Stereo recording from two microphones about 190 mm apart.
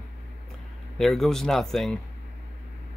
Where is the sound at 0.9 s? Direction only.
Centre (ahead or behind).